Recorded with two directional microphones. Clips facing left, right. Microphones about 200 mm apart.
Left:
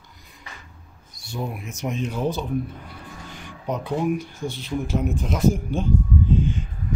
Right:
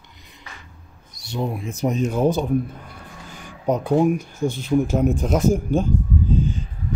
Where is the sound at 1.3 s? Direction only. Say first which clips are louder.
Right 5 dB; 25° right (ahead or behind).